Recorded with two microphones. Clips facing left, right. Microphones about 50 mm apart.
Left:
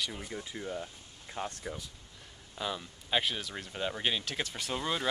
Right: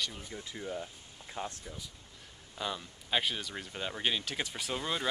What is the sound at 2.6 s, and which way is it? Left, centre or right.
Speech, centre.